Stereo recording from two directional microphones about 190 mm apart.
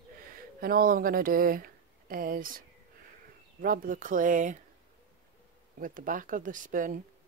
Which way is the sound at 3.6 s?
45° right (ahead or behind).